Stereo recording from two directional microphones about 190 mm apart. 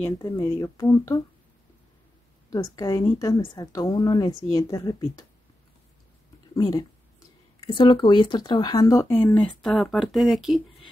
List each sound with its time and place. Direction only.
0.0 s speech: 15° left (ahead or behind)
2.5 s a woman's voice: 20° left (ahead or behind)
6.5 s speech: 20° left (ahead or behind)
9.3 s speech: 5° left (ahead or behind)